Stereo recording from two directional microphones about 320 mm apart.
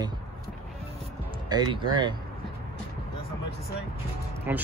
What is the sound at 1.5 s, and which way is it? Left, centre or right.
Speech, centre.